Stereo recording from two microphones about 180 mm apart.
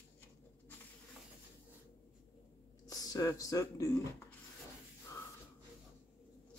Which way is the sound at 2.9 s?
20° left (ahead or behind).